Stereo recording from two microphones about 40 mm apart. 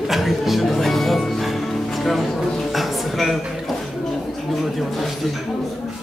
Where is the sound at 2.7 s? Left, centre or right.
Centre.